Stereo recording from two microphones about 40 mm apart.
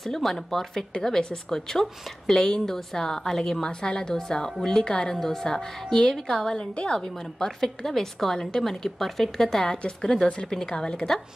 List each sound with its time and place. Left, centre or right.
0.0 s a woman's voice: centre; by 7.0 s left
7.0 s speech: centre
8.4 s a woman's voice: centre
8.6 s speech: centre